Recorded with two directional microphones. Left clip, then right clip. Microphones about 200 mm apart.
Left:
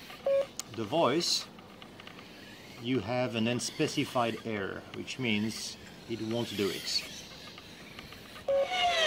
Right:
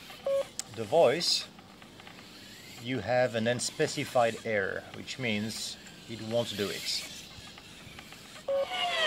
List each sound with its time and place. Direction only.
0.6 s speech: 25° right (ahead or behind)
2.9 s speech: 30° right (ahead or behind)
8.5 s a sound: 5° left (ahead or behind)